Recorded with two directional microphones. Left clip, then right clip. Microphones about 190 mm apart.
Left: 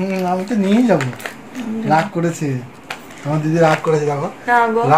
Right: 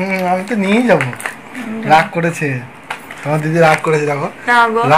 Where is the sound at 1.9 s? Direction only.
15° right (ahead or behind).